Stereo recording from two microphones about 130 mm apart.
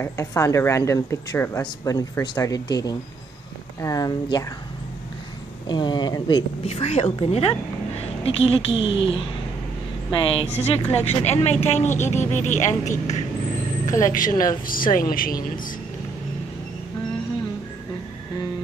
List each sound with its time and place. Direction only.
0.0 s speech: 25° left (ahead or behind)
5.7 s speech: 35° left (ahead or behind)
6.6 s a woman's voice: 50° left (ahead or behind)
10.3 s a woman's voice: 50° left (ahead or behind)
13.9 s a woman's voice: 90° left